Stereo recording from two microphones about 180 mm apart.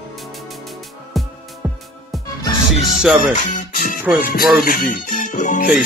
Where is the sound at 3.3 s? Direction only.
45° left (ahead or behind).